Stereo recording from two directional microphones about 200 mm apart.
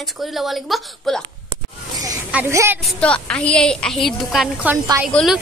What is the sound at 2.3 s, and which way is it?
Speech, 10° right (ahead or behind).